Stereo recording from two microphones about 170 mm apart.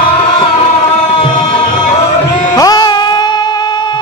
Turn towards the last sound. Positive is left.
turn(degrees=25)  # may be behind; listen again after turning